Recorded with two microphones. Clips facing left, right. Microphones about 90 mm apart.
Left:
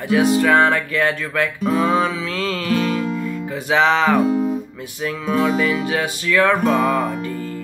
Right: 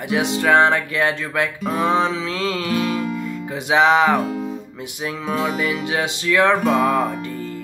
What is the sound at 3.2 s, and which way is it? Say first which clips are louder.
Music: left 2 dB; 20° right (ahead or behind).